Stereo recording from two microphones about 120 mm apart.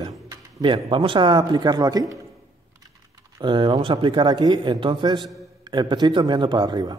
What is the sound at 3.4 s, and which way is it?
A man's voice, 40° right (ahead or behind).